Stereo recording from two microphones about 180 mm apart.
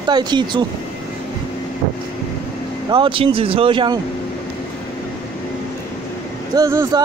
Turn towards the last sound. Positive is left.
turn(degrees=-20)  # may be behind; listen again after turning